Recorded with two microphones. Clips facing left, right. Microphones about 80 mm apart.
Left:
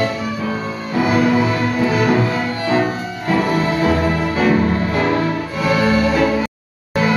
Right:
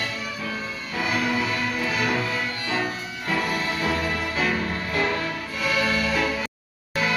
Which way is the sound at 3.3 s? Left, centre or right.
Left.